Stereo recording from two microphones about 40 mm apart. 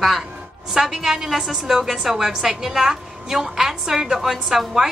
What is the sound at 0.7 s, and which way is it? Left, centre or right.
A woman's voice, centre.